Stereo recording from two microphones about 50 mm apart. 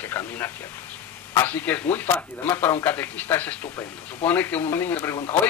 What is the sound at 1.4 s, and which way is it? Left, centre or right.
Speech, left.